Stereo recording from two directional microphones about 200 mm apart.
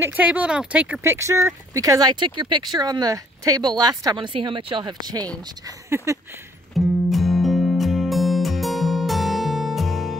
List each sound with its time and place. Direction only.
0.0 s speech: 10° right (ahead or behind)
6.7 s music: centre (ahead or behind)